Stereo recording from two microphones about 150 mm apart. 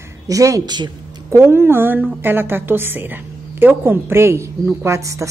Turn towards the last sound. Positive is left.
turn(degrees=-20)  # may be behind; listen again after turning